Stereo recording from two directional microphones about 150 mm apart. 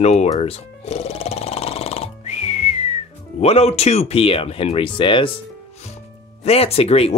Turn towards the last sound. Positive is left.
turn(degrees=40)  # may be behind; listen again after turning